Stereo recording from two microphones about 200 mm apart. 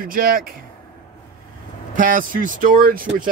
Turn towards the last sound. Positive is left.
turn(degrees=-45)  # may be behind; listen again after turning